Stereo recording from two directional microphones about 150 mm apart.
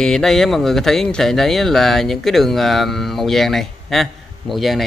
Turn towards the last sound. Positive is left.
turn(degrees=0)  # may be behind; listen again after turning